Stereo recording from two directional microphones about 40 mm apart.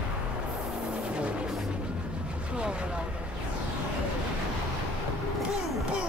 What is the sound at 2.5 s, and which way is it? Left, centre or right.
Vehicle, right.